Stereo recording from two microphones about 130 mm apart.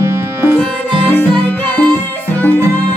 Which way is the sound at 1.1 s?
15° left (ahead or behind).